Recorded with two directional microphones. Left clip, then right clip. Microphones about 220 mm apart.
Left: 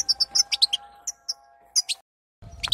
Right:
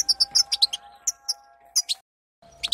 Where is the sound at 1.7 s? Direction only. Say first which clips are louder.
Even; 20° left (ahead or behind).